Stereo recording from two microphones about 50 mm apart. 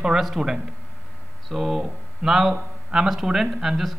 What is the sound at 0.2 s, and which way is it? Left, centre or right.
A man's voice, centre.